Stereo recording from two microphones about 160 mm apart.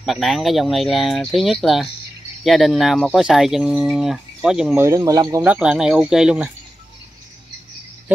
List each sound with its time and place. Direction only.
0.0 s speech: centre (ahead or behind)
4.7 s speech: 20° right (ahead or behind)
5.4 s speech: 5° right (ahead or behind)